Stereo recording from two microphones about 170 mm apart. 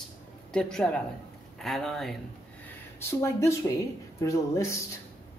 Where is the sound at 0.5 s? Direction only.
5° left (ahead or behind).